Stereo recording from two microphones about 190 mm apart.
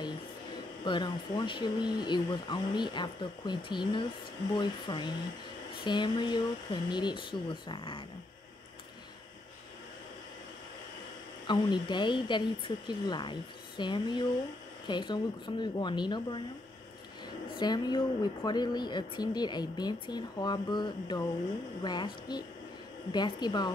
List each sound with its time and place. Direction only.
0.8 s a woman's voice: 25° left (ahead or behind)
11.4 s a woman's voice: 25° left (ahead or behind)
17.6 s a woman's voice: 20° left (ahead or behind)